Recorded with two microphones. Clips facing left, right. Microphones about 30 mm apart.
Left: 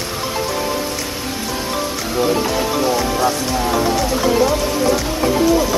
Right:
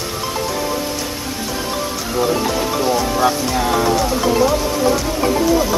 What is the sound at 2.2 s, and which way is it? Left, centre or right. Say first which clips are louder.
Speech: left 1 dB; centre.